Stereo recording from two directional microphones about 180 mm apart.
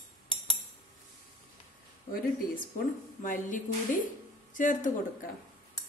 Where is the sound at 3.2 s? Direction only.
45° left (ahead or behind).